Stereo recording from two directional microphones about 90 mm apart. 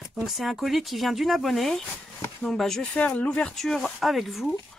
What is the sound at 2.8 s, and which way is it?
Speech, 15° left (ahead or behind).